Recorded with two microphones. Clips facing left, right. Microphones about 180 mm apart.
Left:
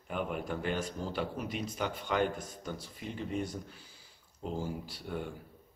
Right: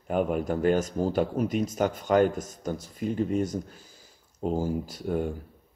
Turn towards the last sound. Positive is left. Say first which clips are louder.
# right 10 dB
turn(degrees=-45)  # may be behind; listen again after turning